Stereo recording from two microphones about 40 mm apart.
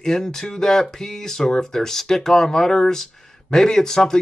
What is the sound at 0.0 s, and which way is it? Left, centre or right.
Speech, centre.